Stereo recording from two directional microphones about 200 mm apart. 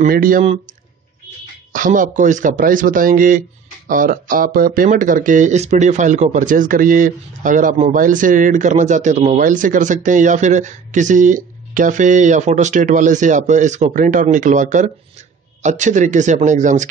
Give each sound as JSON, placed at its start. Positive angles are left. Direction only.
{"t": 0.0, "sound": "speech", "side_deg": -45}
{"t": 1.7, "sound": "speech", "side_deg": -40}